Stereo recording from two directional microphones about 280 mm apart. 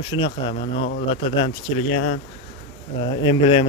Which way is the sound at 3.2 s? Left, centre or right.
Centre.